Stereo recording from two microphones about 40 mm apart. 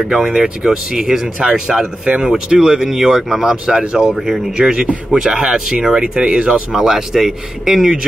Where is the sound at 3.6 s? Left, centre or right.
Right.